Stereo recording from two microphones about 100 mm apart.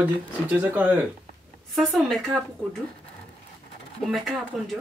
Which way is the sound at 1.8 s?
Centre (ahead or behind).